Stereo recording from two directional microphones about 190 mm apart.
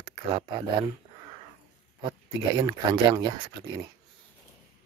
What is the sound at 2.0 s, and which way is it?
Speech, 25° right (ahead or behind).